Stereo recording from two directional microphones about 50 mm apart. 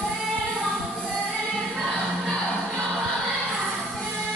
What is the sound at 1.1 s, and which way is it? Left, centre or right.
Music, left.